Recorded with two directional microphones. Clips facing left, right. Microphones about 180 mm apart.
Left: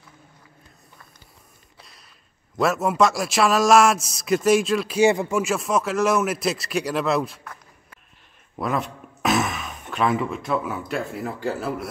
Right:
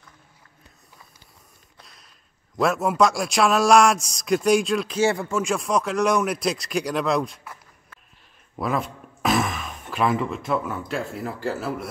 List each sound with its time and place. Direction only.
1.8 s a sound: centre (ahead or behind)
2.5 s a man's voice: centre (ahead or behind)
5.0 s speech: 15° left (ahead or behind)
5.4 s a man's voice: 5° left (ahead or behind)
8.5 s a man's voice: centre (ahead or behind)